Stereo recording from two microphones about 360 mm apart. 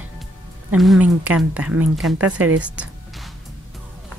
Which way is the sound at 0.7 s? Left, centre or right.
Centre.